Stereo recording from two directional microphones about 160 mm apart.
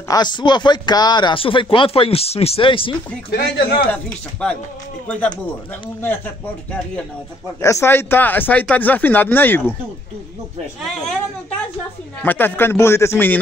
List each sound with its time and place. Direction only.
0.1 s speech: 25° left (ahead or behind)
3.3 s speech: 75° left (ahead or behind)
3.9 s speech: 5° left (ahead or behind)
7.6 s speech: 15° left (ahead or behind)
12.2 s speech: 10° left (ahead or behind)